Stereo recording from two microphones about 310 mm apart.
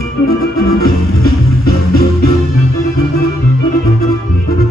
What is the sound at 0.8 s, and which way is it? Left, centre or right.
Music, left.